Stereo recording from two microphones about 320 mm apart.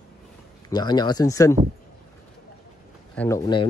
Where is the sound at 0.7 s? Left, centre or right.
Centre.